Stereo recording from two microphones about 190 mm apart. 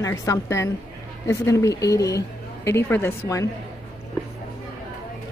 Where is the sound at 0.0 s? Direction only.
15° left (ahead or behind).